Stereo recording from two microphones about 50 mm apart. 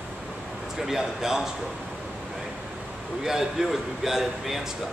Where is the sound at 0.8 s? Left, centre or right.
Centre.